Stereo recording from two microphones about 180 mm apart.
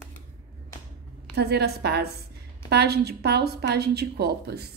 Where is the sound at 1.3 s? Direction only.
65° right (ahead or behind).